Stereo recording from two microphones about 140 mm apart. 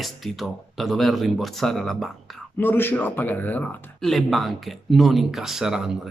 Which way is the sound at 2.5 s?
15° left (ahead or behind).